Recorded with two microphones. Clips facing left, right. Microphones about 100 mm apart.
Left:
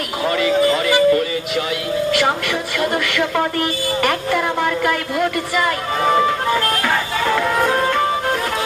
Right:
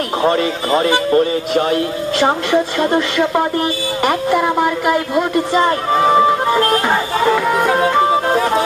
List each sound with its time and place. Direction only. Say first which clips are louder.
0.2 s a man's voice: left 1 dB; 35° right (ahead or behind)
7.5 s music: right 3 dB; 5° right (ahead or behind)